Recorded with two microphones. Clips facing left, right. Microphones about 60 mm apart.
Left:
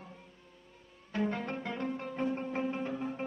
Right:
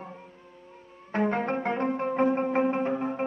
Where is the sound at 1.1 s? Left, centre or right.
Right.